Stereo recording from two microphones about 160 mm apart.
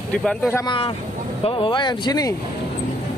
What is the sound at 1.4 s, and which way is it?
Speech, 30° left (ahead or behind).